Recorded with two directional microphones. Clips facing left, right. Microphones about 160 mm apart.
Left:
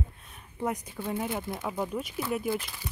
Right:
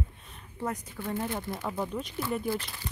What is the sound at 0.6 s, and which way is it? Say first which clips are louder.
Speech: left 2 dB; 10° left (ahead or behind).